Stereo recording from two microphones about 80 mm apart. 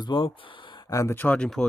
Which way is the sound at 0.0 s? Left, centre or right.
Left.